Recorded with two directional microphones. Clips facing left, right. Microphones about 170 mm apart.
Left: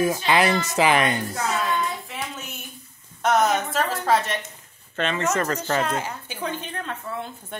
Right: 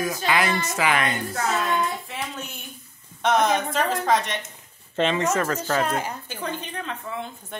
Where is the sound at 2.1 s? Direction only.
Centre (ahead or behind).